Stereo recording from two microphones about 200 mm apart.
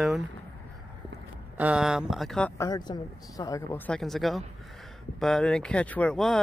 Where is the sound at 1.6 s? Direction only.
5° right (ahead or behind).